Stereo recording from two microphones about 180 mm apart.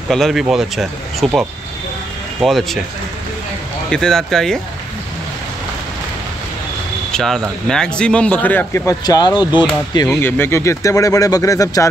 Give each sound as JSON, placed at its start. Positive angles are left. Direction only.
{"t": 0.1, "sound": "speech", "side_deg": 0}
{"t": 3.9, "sound": "speech", "side_deg": 5}
{"t": 7.1, "sound": "speech", "side_deg": 5}
{"t": 9.9, "sound": "speech", "side_deg": 15}